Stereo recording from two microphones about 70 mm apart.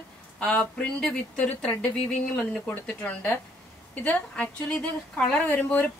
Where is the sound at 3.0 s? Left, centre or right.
Centre.